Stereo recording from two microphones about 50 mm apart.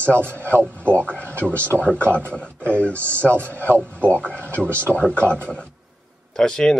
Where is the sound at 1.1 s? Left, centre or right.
Left.